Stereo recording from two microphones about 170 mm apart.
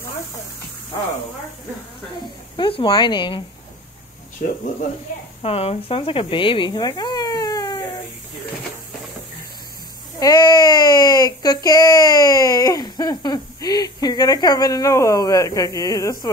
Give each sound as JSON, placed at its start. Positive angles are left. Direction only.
{"t": 2.5, "sound": "speech", "side_deg": 30}
{"t": 4.4, "sound": "speech", "side_deg": 65}
{"t": 5.4, "sound": "speech", "side_deg": 35}
{"t": 10.1, "sound": "speech", "side_deg": 20}